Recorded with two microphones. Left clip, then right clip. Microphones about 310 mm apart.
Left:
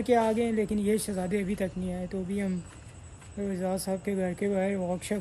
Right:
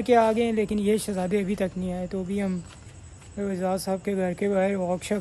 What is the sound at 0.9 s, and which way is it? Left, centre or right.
Speech, centre.